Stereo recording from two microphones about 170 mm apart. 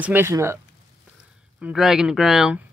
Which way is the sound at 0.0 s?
10° right (ahead or behind).